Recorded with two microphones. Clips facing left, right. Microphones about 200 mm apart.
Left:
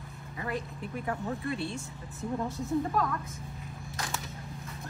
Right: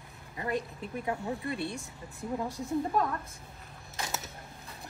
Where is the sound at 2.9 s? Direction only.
25° right (ahead or behind).